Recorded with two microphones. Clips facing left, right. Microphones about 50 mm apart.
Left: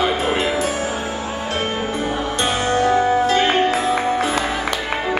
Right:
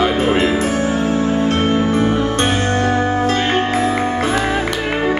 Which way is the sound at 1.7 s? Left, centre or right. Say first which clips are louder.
Right 7 dB; right.